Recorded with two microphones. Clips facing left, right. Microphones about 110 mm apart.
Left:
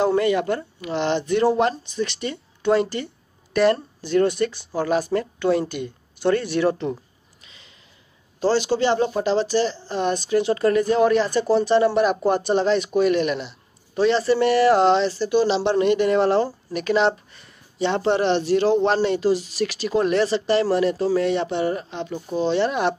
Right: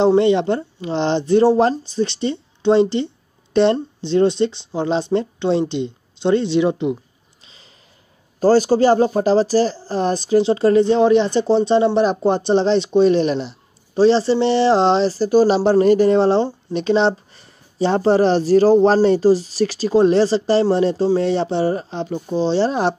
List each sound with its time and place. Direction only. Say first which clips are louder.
0.0 s speech: right 5 dB; 25° right (ahead or behind)
7.4 s a sound: right 1 dB; 35° right (ahead or behind)
8.4 s a man's voice: right 6 dB; 45° right (ahead or behind)